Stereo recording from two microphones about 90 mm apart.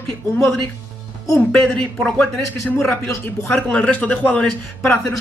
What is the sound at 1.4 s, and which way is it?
Speech, 10° left (ahead or behind).